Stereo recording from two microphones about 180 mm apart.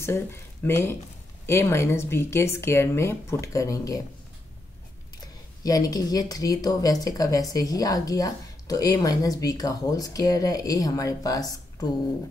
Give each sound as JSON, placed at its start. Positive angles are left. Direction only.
{"t": 0.0, "sound": "speech", "side_deg": 15}
{"t": 5.6, "sound": "a woman's voice", "side_deg": 20}